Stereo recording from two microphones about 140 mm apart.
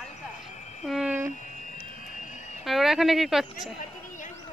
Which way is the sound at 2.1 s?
65° left (ahead or behind).